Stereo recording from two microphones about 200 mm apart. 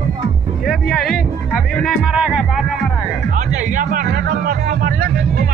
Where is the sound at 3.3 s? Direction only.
40° right (ahead or behind).